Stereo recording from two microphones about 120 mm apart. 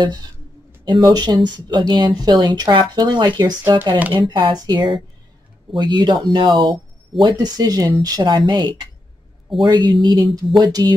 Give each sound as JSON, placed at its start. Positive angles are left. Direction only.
{"t": 1.0, "sound": "speech", "side_deg": -35}